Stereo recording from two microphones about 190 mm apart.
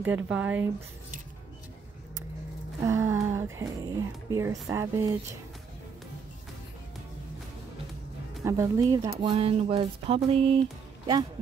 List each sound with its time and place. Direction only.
0.0 s speech: 10° right (ahead or behind)
2.8 s speech: 15° right (ahead or behind)
8.5 s a sound: 15° right (ahead or behind)